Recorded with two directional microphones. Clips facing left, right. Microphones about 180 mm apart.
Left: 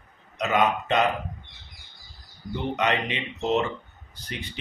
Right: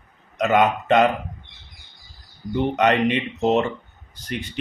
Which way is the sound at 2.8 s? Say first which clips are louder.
Right 8 dB; 55° right (ahead or behind).